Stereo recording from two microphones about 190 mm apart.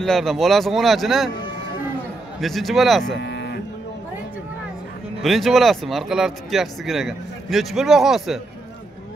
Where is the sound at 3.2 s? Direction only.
65° left (ahead or behind).